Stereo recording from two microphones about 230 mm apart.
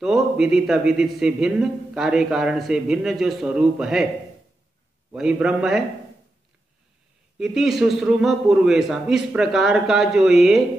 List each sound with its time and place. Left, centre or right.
0.0 s a man's voice: centre
5.1 s a man's voice: centre
7.3 s a man's voice: centre